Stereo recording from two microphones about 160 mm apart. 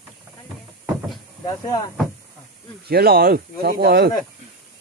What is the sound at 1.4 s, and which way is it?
Speech, 20° left (ahead or behind).